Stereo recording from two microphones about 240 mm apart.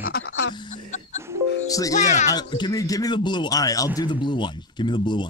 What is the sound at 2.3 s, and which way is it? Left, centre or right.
Speech, centre.